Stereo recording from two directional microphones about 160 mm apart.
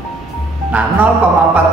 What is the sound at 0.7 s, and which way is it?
Speech, 10° right (ahead or behind).